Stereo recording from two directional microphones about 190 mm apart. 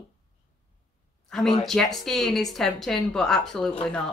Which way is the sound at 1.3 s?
Centre (ahead or behind).